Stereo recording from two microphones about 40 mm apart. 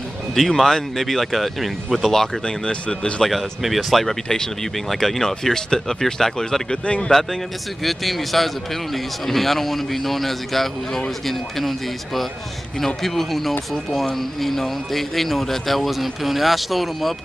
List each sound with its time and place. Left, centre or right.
0.3 s a man's voice: centre
2.4 s speech: left
3.3 s a man's voice: centre
12.8 s a man's voice: centre